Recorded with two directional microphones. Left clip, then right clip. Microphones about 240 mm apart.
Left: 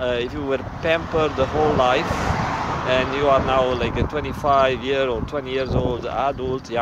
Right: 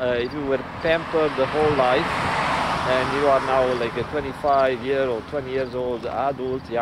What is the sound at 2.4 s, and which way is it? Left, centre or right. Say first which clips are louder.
Vehicle: right 2 dB; right.